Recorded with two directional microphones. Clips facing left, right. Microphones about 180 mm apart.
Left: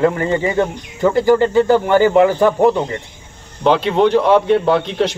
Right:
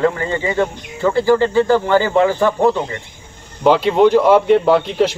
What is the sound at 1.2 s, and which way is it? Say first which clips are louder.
Speech: left 1 dB; 20° left (ahead or behind).